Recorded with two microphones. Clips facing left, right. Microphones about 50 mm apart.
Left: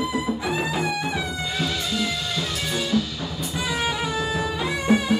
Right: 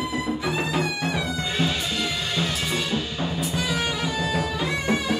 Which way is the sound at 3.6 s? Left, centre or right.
Centre.